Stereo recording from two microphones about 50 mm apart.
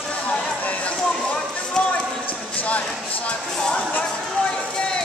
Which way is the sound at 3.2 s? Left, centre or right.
Left.